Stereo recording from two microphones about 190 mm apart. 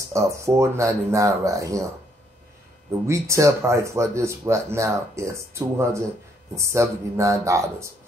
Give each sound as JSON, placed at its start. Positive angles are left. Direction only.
{"t": 0.0, "sound": "speech", "side_deg": -15}
{"t": 3.1, "sound": "speech", "side_deg": -15}